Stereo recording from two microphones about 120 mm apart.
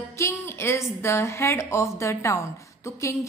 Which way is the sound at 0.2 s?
20° left (ahead or behind).